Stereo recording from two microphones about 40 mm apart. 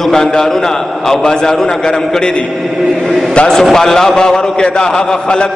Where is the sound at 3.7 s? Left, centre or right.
Centre.